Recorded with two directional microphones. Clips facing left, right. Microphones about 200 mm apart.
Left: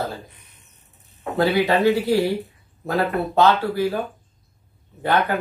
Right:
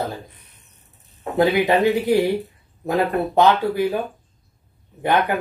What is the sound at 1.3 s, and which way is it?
Speech, 20° right (ahead or behind).